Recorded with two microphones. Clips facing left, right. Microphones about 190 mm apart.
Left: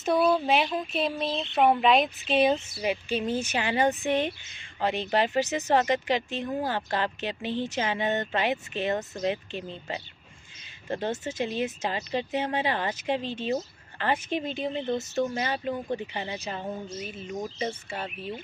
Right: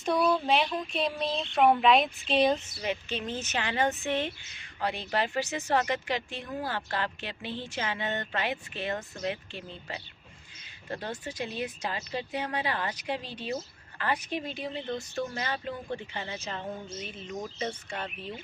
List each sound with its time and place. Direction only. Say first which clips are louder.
0.0 s a woman's voice: left 3 dB; 5° left (ahead or behind)
16.4 s speech: left 3 dB; 5° left (ahead or behind)